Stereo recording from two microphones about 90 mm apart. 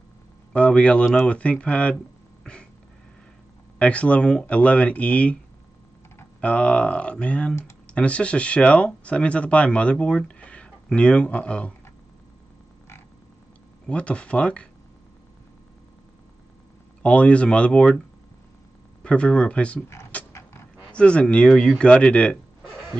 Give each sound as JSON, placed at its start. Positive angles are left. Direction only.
{"t": 0.5, "sound": "speech", "side_deg": 15}
{"t": 3.7, "sound": "speech", "side_deg": 15}
{"t": 6.4, "sound": "speech", "side_deg": 15}
{"t": 13.8, "sound": "speech", "side_deg": 10}
{"t": 17.0, "sound": "speech", "side_deg": 15}
{"t": 19.0, "sound": "speech", "side_deg": 10}
{"t": 20.1, "sound": "dog", "side_deg": 15}
{"t": 20.9, "sound": "speech", "side_deg": 10}